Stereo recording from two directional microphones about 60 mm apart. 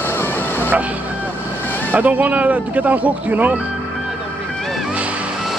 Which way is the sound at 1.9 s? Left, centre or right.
Right.